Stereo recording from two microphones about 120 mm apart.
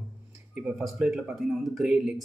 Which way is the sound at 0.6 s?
10° right (ahead or behind).